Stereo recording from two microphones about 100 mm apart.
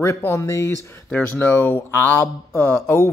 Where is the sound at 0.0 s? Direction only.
25° left (ahead or behind).